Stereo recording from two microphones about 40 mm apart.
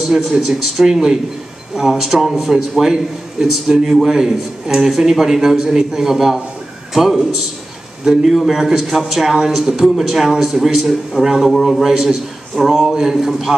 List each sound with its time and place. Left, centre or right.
0.0 s a man's voice: centre
11.8 s a man's voice: centre
12.5 s speech: centre
12.8 s a man's voice: centre